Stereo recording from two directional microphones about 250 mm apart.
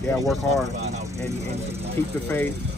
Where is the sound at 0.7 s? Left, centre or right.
Right.